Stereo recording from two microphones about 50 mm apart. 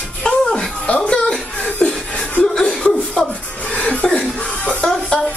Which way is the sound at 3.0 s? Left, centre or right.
Left.